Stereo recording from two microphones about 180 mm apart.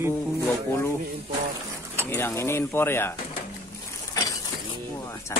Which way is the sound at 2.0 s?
15° left (ahead or behind).